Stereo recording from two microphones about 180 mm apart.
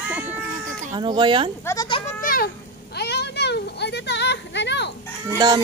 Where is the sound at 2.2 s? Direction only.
55° left (ahead or behind).